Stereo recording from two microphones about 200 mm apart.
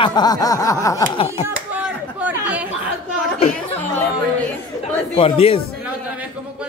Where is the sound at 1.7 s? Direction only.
5° right (ahead or behind).